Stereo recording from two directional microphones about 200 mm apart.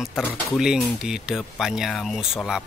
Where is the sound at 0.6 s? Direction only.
5° right (ahead or behind).